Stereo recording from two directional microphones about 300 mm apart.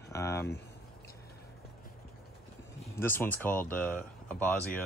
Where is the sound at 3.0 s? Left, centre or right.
Centre.